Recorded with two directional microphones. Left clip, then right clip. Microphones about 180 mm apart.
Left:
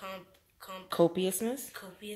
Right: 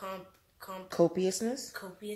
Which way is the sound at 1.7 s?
55° right (ahead or behind).